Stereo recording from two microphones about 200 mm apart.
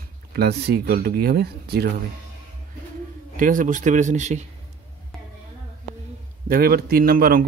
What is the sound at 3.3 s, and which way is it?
Speech, 40° right (ahead or behind).